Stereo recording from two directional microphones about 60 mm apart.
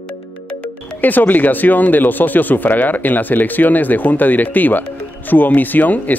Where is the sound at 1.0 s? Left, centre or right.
Left.